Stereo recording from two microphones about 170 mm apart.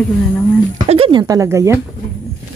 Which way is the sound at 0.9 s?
30° right (ahead or behind).